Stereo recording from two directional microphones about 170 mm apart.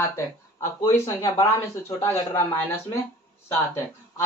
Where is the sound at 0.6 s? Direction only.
15° left (ahead or behind).